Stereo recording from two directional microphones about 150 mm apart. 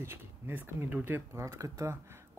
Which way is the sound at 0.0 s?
15° right (ahead or behind).